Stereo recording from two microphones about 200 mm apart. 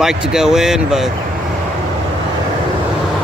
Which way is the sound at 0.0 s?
5° right (ahead or behind).